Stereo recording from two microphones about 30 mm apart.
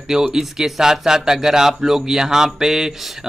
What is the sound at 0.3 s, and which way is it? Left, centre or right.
Speech, centre.